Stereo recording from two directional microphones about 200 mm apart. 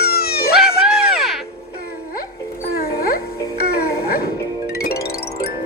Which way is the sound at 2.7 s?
45° left (ahead or behind).